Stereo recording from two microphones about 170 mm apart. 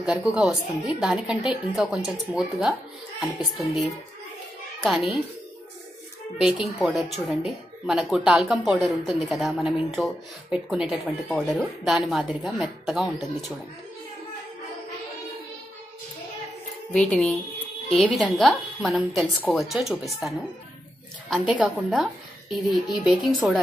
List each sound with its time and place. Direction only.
0.0 s a child's voice: 5° right (ahead or behind)
6.3 s speech: 5° right (ahead or behind)
16.9 s a woman's voice: 5° left (ahead or behind)